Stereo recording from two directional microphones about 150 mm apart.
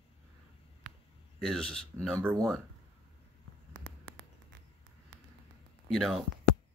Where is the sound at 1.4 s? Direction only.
5° left (ahead or behind).